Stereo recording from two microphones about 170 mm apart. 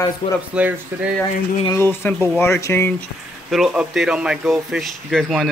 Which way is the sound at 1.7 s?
15° left (ahead or behind).